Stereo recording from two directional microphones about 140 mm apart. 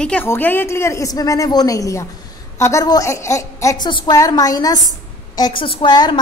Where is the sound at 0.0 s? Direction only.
10° left (ahead or behind).